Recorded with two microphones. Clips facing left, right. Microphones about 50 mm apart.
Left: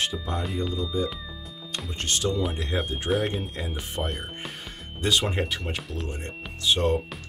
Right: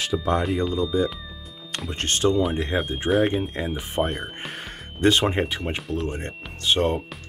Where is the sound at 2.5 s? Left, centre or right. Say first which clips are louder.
Right 4 dB; right.